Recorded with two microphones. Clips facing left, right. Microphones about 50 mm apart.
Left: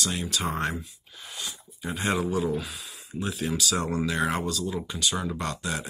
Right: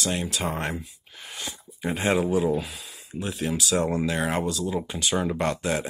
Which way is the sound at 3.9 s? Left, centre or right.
Right.